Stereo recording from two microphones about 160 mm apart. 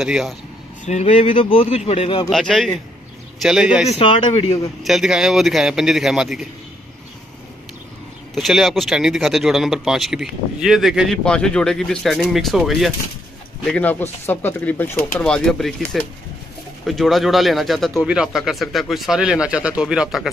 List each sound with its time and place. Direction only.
0.0 s speech: 5° right (ahead or behind)
0.8 s speech: 45° left (ahead or behind)
1.3 s speech: 35° left (ahead or behind)
2.2 s speech: centre (ahead or behind)
4.0 s speech: 30° left (ahead or behind)
4.8 s speech: 5° right (ahead or behind)
8.4 s speech: centre (ahead or behind)
13.7 s speech: 10° left (ahead or behind)